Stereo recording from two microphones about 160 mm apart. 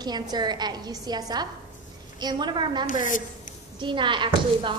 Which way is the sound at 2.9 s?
55° left (ahead or behind).